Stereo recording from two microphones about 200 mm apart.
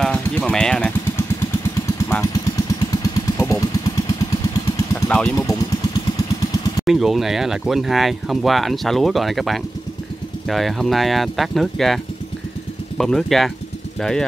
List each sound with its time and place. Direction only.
0.0 s a sound: 5° left (ahead or behind)
2.0 s vehicle: 15° left (ahead or behind)
5.0 s speech: 5° left (ahead or behind)
6.8 s speech: centre (ahead or behind)